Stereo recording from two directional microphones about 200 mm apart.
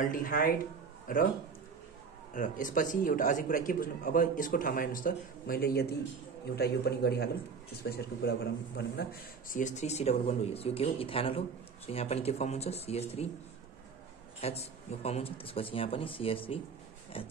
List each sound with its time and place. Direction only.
0.0 s a man's voice: 45° left (ahead or behind)
2.3 s a man's voice: 40° left (ahead or behind)
14.4 s speech: 30° left (ahead or behind)